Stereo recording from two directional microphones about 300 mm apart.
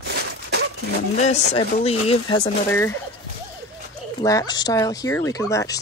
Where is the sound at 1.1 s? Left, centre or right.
Left.